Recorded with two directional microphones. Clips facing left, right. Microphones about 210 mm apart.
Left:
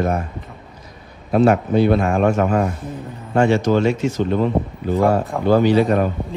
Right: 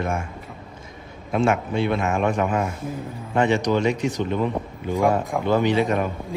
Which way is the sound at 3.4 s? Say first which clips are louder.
Left 4 dB; 15° right (ahead or behind).